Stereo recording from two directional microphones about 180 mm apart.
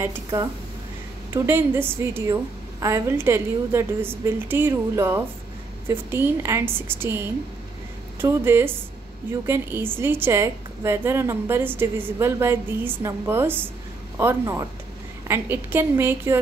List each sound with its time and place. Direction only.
0.0 s a woman's voice: 15° right (ahead or behind)